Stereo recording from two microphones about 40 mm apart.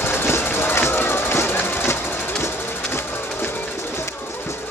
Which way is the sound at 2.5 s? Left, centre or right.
Left.